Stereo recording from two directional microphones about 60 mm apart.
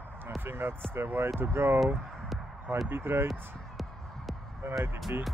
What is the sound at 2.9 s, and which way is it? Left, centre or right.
Speech, right.